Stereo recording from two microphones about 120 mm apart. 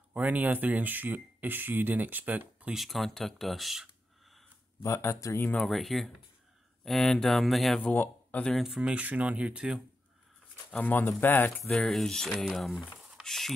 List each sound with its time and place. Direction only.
0.1 s speech: 15° right (ahead or behind)
4.8 s speech: 25° left (ahead or behind)
5.5 s speech: 5° left (ahead or behind)
7.9 s speech: 15° left (ahead or behind)
8.5 s speech: 5° right (ahead or behind)
10.7 s speech: 10° left (ahead or behind)
11.5 s speech: 5° left (ahead or behind)